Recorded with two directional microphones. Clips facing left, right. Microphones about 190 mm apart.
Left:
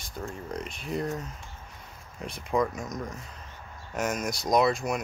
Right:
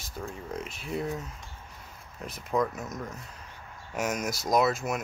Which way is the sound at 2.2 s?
Centre (ahead or behind).